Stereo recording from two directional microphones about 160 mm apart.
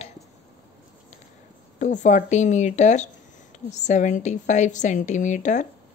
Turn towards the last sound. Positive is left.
turn(degrees=50)  # may be behind; listen again after turning